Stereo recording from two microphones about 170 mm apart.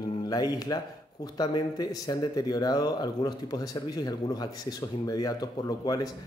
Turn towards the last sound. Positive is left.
turn(degrees=25)  # may be behind; listen again after turning